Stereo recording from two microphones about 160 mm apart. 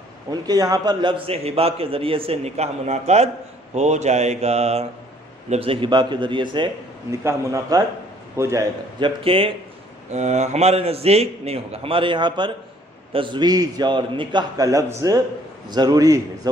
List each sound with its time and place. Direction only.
0.3 s a man's voice: 25° right (ahead or behind)
7.1 s a man's voice: 20° right (ahead or behind)
9.0 s a man's voice: 35° right (ahead or behind)
10.1 s a man's voice: 45° right (ahead or behind); by 16.2 s 20° right (ahead or behind)